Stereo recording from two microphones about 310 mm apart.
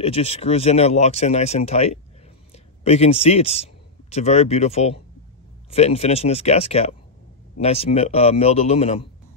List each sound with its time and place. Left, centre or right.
0.0 s speech: centre